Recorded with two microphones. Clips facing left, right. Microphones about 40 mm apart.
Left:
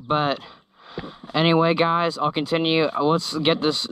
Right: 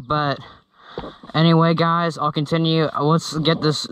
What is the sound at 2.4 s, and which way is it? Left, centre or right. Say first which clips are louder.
Speech: right 2 dB; left.